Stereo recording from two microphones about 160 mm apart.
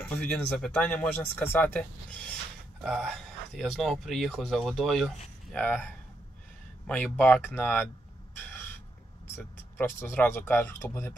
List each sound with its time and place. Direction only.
0.0 s speech: 10° left (ahead or behind)
9.3 s speech: 15° left (ahead or behind)